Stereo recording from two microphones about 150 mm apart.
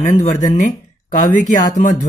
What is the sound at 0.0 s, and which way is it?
Speech, 55° left (ahead or behind).